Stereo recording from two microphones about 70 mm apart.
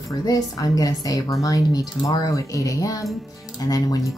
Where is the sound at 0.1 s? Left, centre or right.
Left.